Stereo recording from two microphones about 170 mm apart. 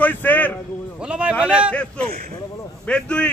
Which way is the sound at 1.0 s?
5° right (ahead or behind).